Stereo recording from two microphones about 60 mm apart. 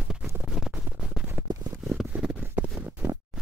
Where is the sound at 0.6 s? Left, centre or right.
Centre.